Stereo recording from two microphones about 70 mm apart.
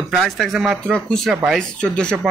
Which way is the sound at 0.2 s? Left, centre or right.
Centre.